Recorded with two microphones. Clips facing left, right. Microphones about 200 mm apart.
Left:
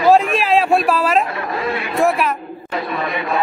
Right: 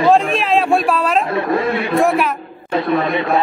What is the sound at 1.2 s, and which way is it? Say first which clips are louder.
Chatter: right 5 dB; 25° right (ahead or behind).